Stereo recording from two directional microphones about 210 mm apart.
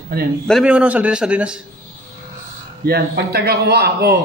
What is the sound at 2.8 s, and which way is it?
A man's voice, 45° right (ahead or behind).